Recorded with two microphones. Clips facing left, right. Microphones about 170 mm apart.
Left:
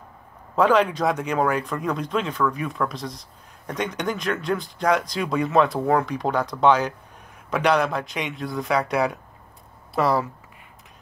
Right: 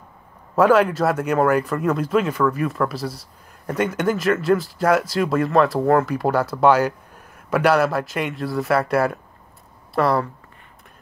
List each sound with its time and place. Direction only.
0.6 s speech: 5° right (ahead or behind)